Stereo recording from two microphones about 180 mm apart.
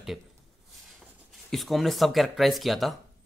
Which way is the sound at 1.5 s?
Centre (ahead or behind).